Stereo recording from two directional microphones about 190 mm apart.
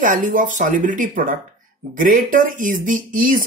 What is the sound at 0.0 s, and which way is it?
A man's voice, 45° right (ahead or behind).